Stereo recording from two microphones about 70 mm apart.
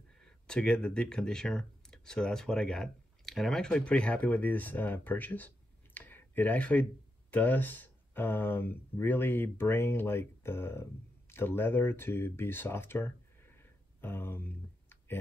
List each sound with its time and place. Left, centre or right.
0.2 s speech: centre; by 15.1 s left